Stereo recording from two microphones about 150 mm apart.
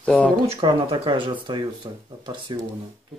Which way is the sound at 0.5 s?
40° right (ahead or behind).